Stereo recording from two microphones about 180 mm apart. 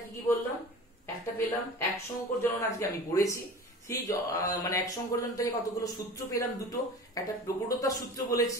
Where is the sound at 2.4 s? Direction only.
15° left (ahead or behind).